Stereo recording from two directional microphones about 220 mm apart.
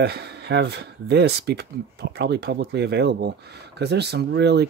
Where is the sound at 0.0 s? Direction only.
50° right (ahead or behind).